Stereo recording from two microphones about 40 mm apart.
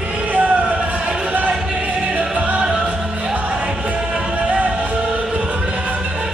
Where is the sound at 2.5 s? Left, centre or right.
Right.